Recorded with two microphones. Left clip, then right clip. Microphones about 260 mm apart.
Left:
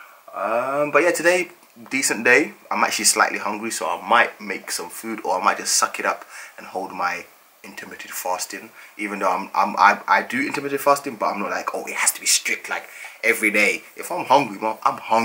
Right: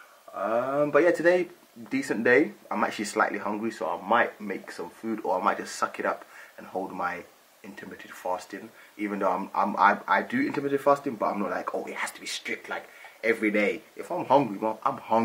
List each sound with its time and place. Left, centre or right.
0.3 s speech: centre
7.0 s speech: centre